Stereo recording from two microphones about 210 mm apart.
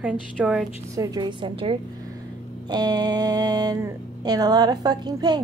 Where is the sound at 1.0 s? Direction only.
20° right (ahead or behind).